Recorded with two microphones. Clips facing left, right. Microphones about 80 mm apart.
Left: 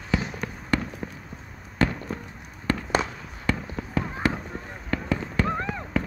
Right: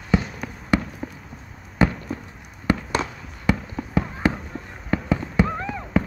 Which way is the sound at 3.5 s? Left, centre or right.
Centre.